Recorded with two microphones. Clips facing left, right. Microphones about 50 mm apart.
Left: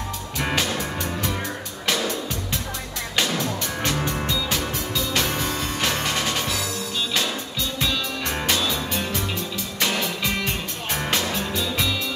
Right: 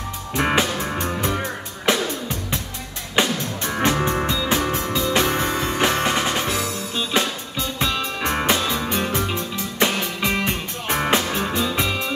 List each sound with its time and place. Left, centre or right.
0.4 s music: right